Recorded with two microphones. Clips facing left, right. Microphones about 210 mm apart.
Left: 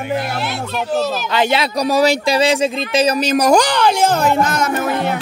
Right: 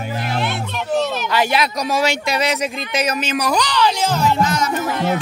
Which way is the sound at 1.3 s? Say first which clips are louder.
Left 2 dB; 25° left (ahead or behind).